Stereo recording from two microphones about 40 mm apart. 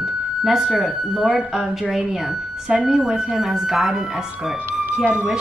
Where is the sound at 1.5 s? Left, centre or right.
Centre.